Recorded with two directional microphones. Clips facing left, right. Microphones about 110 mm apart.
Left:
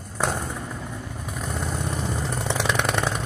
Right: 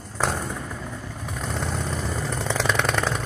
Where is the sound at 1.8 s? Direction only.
15° left (ahead or behind).